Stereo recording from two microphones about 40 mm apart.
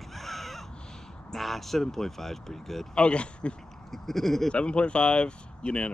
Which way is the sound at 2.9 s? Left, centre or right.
Left.